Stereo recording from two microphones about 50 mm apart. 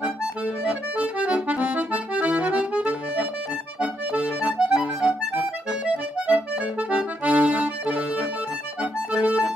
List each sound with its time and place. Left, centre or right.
0.0 s accordion: right